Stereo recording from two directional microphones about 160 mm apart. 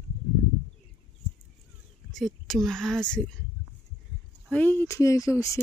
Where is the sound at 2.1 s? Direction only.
Centre (ahead or behind).